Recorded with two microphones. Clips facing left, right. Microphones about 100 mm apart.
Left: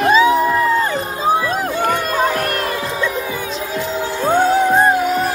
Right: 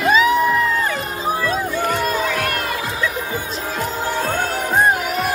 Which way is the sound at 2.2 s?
40° left (ahead or behind).